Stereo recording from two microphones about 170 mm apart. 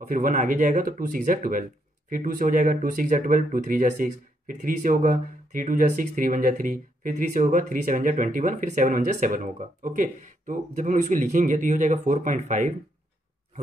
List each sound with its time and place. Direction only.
0.0 s speech: 55° right (ahead or behind)